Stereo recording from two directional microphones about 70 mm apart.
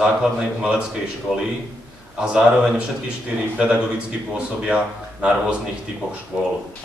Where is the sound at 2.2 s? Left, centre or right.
Centre.